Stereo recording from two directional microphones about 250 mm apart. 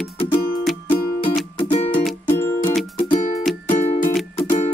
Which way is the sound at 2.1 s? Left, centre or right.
Centre.